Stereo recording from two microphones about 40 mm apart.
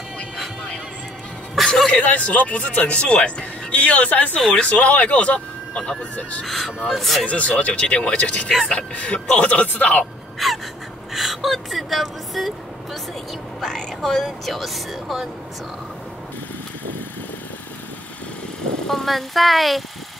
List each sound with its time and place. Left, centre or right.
1.9 s speech: left
3.7 s speech: left
6.4 s speech: centre
7.2 s speech: left
10.4 s speech: centre
13.6 s speech: centre
18.9 s speech: centre